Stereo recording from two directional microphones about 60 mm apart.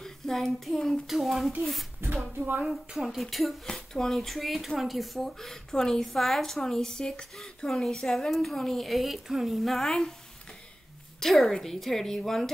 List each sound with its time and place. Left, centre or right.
0.0 s child singing: centre
1.0 s a woman's voice: centre
2.3 s speech: right
2.9 s a woman's voice: centre
11.1 s a woman's voice: centre